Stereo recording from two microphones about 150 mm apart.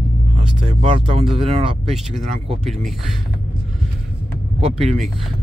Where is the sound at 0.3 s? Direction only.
45° right (ahead or behind).